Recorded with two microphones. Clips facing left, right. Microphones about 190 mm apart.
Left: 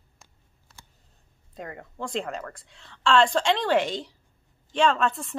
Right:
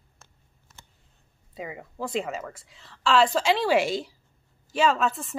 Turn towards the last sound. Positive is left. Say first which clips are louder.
# even
turn(degrees=0)  # may be behind; listen again after turning